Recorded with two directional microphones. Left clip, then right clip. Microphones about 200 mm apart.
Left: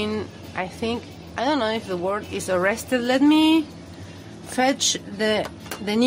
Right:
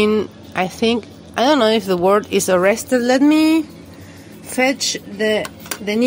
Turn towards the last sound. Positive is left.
turn(degrees=0)  # may be behind; listen again after turning